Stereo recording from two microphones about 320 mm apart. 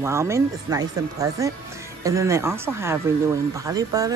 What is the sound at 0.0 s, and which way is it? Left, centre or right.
Speech, centre.